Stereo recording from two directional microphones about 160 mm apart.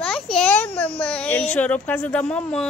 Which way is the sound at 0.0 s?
5° left (ahead or behind).